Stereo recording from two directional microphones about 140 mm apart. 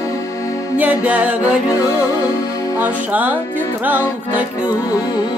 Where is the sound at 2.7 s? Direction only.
10° right (ahead or behind).